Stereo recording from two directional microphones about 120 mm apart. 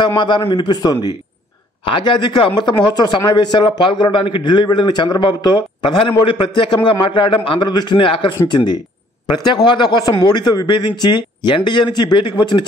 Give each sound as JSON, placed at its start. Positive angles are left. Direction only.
{"t": 0.0, "sound": "a man's voice", "side_deg": 40}